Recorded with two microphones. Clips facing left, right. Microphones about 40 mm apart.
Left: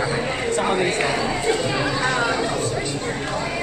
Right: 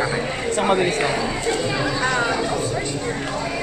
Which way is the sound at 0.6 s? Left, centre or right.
Centre.